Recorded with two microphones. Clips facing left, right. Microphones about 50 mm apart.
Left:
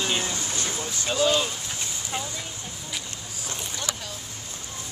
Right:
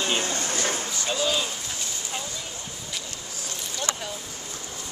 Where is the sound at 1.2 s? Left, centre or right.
Centre.